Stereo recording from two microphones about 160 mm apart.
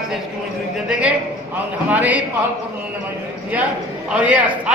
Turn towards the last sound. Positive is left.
turn(degrees=-10)  # may be behind; listen again after turning